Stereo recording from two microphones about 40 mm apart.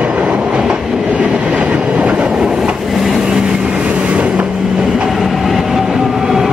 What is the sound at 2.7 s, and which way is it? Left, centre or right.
Vehicle, centre.